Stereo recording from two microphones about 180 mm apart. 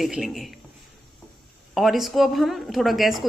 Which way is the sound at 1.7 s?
Centre (ahead or behind).